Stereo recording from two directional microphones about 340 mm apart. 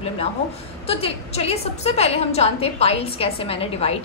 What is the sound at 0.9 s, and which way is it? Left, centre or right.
A woman's voice, centre.